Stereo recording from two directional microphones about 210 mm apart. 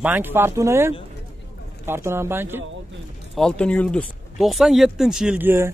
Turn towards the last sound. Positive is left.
turn(degrees=-10)  # may be behind; listen again after turning